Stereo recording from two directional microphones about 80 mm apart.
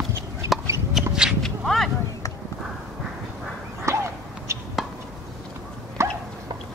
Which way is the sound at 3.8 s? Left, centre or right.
Right.